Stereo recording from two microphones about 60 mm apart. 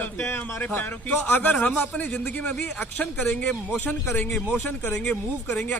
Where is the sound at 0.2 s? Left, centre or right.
Left.